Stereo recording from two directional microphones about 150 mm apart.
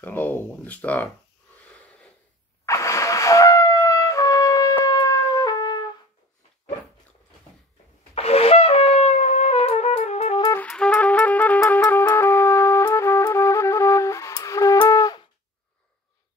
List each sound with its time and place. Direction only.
0.0 s speech: 10° left (ahead or behind)
2.6 s music: 20° left (ahead or behind)
8.1 s wind instrument: 40° left (ahead or behind)
10.5 s music: 10° left (ahead or behind); by 15.2 s 25° left (ahead or behind)